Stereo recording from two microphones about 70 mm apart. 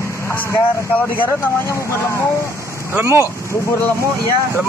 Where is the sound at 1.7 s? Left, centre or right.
Left.